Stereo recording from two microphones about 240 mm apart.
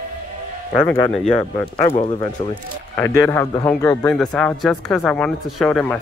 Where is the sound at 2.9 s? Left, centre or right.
Centre.